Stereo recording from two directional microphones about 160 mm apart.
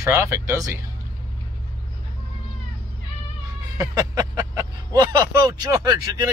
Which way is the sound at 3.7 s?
20° right (ahead or behind).